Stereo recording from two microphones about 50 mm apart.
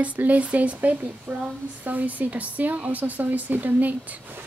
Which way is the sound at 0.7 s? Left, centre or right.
Right.